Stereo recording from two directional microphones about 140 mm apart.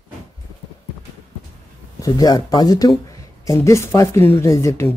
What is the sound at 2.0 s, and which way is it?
Speech, 25° left (ahead or behind).